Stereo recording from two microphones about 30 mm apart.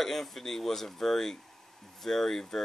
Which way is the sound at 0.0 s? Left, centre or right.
Centre.